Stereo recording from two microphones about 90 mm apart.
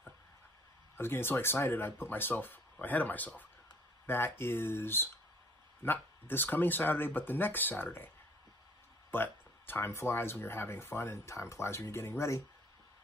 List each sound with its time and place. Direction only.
0.9 s speech: 25° left (ahead or behind)
9.1 s speech: 25° left (ahead or behind)